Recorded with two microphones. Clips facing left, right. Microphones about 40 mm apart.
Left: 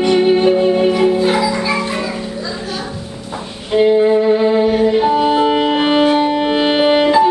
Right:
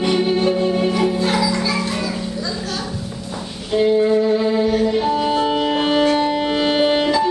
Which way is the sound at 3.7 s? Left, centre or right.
Left.